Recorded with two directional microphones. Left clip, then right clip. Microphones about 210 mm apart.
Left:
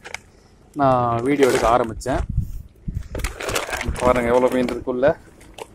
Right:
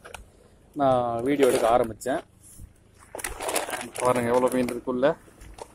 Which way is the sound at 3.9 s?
5° right (ahead or behind).